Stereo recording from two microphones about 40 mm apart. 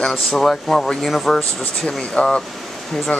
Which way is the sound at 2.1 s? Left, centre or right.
Left.